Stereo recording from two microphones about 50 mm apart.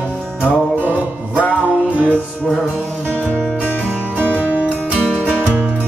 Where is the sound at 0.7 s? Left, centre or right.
Right.